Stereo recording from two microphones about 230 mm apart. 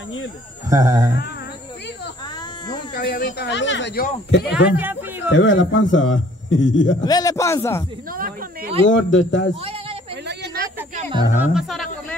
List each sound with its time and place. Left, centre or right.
0.7 s speech: centre
2.9 s speech: left
4.7 s a sound: centre
5.3 s a man's voice: left
7.1 s a man's voice: centre
8.8 s a man's voice: left
11.0 s music: right
11.3 s speech: centre